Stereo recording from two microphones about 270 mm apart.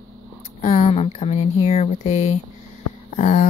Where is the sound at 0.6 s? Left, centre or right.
Left.